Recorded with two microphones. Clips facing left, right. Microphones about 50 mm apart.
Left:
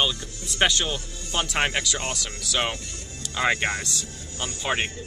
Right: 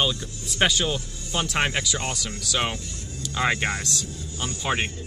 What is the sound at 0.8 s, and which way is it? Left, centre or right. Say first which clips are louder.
Speech: right 3 dB; left.